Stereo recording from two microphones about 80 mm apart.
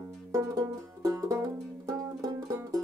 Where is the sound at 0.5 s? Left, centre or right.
Right.